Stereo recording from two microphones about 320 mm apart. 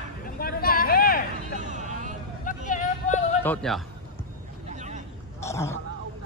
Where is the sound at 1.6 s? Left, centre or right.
Right.